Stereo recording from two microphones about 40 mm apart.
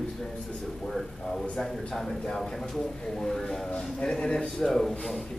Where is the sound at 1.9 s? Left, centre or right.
Centre.